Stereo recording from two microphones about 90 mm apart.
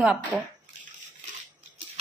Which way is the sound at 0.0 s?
10° right (ahead or behind).